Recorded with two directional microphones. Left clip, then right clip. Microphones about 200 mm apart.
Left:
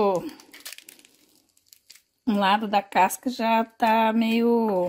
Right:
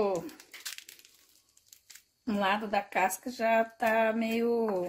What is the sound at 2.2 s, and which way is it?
Speech, 40° left (ahead or behind).